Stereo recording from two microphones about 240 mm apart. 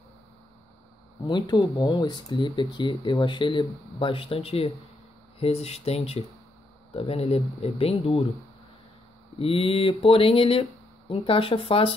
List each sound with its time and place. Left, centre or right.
1.2 s speech: centre
9.4 s speech: left